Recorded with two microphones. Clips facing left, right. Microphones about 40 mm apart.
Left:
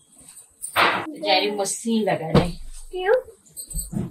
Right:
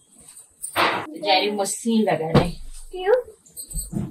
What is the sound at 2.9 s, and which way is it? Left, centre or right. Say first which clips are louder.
Speech: right 1 dB; centre.